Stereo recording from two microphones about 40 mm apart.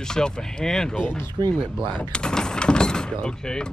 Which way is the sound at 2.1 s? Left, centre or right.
Left.